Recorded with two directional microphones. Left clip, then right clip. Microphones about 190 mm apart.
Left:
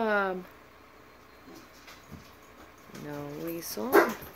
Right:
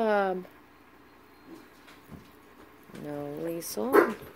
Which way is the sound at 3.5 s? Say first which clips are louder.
Right 3 dB; 15° right (ahead or behind).